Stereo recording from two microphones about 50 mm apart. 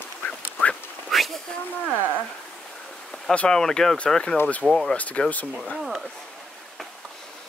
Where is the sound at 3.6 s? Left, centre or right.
Centre.